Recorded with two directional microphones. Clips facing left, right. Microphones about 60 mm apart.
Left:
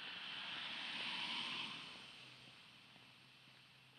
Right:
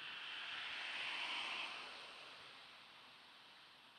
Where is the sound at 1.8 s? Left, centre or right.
Right.